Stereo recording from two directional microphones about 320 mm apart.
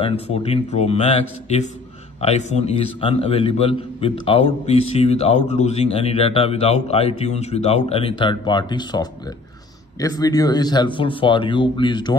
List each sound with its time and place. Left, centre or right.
0.0 s a man's voice: centre